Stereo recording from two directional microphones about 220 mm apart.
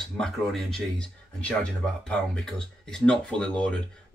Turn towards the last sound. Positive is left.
turn(degrees=5)  # may be behind; listen again after turning